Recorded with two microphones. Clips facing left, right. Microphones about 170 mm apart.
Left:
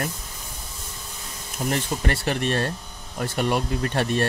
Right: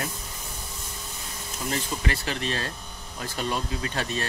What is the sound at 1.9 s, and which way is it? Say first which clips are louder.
Speech: left 5 dB; 55° left (ahead or behind).